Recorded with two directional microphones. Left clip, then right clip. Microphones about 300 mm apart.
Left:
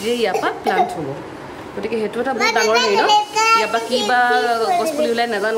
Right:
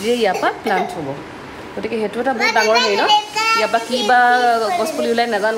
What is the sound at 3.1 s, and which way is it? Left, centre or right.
Child singing, centre.